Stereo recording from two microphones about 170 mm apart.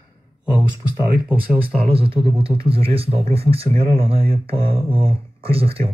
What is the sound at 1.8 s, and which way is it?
Speech, 35° right (ahead or behind).